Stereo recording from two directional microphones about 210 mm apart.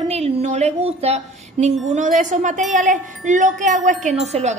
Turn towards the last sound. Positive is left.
turn(degrees=-30)  # may be behind; listen again after turning